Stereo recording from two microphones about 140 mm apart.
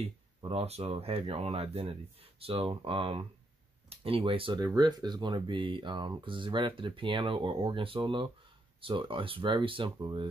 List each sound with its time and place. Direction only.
0.5 s speech: 45° right (ahead or behind)